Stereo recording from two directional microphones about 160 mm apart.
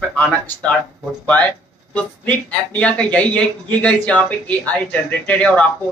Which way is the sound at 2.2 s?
10° left (ahead or behind).